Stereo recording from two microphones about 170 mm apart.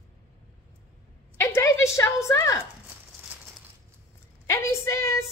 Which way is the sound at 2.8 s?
10° right (ahead or behind).